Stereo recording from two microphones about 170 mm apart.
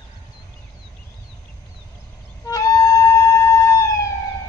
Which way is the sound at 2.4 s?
20° left (ahead or behind).